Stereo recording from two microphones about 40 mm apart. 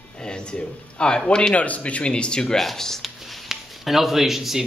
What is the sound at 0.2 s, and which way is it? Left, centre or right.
A man's voice, left.